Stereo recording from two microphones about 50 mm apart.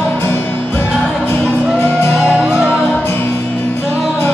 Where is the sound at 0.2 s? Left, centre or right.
Left.